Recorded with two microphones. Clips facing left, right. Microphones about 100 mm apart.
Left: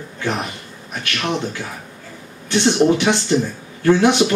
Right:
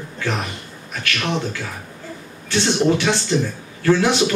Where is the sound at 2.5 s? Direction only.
20° left (ahead or behind).